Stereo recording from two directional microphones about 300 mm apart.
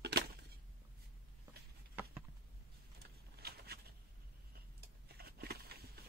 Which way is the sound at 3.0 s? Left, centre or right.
Right.